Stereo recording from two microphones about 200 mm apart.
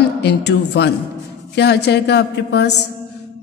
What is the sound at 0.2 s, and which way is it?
Mantra, 60° left (ahead or behind).